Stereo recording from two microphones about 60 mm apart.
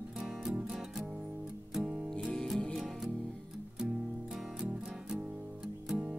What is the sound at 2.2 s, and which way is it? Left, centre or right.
Music, centre.